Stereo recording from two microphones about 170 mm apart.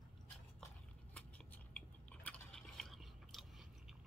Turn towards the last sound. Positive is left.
turn(degrees=0)  # may be behind; listen again after turning